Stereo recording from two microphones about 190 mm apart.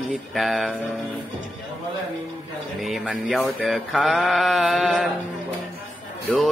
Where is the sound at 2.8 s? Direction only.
5° right (ahead or behind).